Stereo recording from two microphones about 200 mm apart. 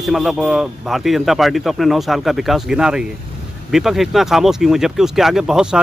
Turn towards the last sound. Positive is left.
turn(degrees=-5)  # may be behind; listen again after turning